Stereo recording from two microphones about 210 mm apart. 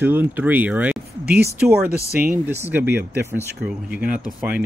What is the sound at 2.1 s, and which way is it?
Speech, 10° right (ahead or behind).